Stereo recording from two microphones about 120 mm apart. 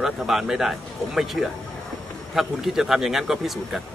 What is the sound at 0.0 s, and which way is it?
A man's voice, 5° right (ahead or behind).